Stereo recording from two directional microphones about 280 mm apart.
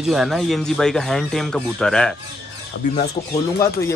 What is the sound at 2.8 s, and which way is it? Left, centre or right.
Speech, left.